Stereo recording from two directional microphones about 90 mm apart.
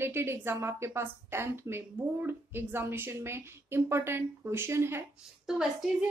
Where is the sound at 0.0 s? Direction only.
25° right (ahead or behind).